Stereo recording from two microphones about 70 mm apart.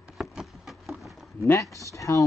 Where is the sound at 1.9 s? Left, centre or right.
Left.